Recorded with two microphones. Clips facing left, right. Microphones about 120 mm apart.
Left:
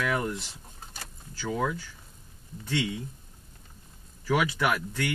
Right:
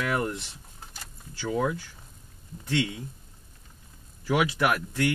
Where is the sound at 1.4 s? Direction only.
20° right (ahead or behind).